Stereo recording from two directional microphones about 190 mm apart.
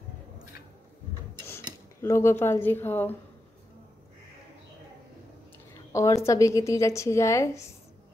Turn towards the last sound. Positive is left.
turn(degrees=15)  # may be behind; listen again after turning